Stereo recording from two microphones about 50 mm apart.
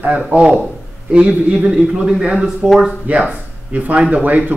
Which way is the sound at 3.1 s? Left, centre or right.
Right.